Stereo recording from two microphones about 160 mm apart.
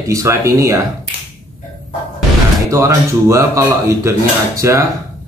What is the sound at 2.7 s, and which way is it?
Speech, 20° right (ahead or behind).